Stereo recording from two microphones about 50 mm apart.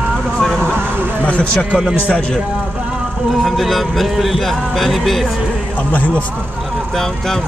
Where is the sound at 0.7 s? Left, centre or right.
Right.